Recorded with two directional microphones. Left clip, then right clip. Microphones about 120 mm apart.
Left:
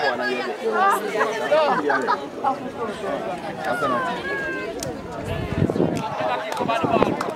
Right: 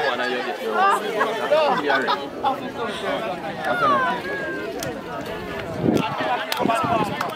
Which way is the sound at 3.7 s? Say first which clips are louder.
Right 4 dB; 25° right (ahead or behind).